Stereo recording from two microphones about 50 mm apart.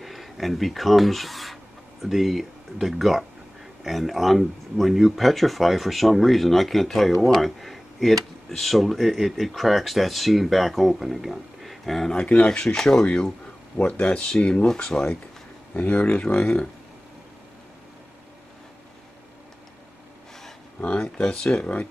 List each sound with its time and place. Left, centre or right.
0.0 s speech: centre
12.2 s speech: centre
13.0 s speech: left
15.7 s speech: left
20.8 s speech: left